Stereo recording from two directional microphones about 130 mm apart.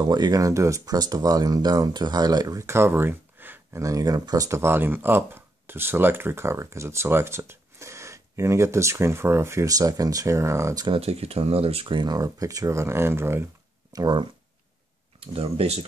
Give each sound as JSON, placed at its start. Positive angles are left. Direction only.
{"t": 0.0, "sound": "speech", "side_deg": -35}
{"t": 10.9, "sound": "speech", "side_deg": -50}
{"t": 13.9, "sound": "speech", "side_deg": -35}
{"t": 15.1, "sound": "speech", "side_deg": -45}